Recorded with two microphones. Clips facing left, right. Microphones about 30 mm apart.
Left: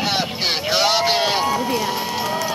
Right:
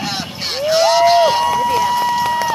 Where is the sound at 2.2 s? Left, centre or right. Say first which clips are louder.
Right 6 dB; centre.